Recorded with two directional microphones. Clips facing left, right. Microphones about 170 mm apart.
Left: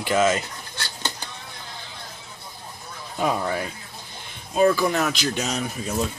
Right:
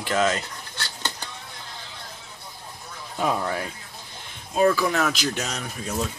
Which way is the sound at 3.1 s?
5° left (ahead or behind).